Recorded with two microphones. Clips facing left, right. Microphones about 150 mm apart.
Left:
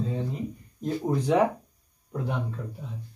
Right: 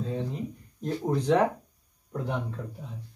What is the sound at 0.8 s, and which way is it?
Speech, 10° left (ahead or behind).